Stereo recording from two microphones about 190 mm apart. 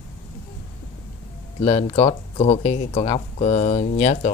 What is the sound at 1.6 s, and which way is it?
Speech, 30° left (ahead or behind).